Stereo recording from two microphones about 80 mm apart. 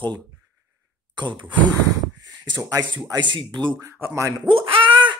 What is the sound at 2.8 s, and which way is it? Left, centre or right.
Speech, right.